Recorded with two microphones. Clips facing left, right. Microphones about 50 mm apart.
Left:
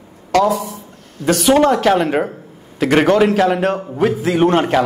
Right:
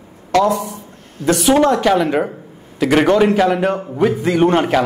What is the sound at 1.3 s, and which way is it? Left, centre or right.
A woman's voice, centre.